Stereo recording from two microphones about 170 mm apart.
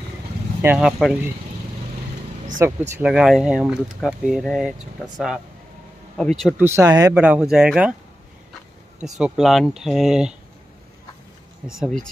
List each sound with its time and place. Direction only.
0.6 s speech: 10° right (ahead or behind)
2.6 s speech: 15° right (ahead or behind)
3.0 s speech: 5° right (ahead or behind)
6.6 s speech: 15° right (ahead or behind)
7.2 s speech: 5° right (ahead or behind)
9.0 s speech: centre (ahead or behind)
11.8 s speech: 5° left (ahead or behind)